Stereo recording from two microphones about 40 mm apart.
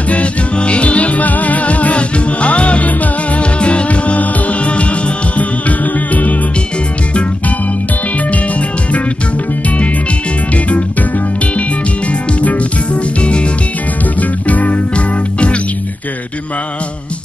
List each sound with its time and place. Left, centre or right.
0.1 s music: left
8.3 s music: left
10.5 s music: left
12.1 s music: left
14.5 s music: left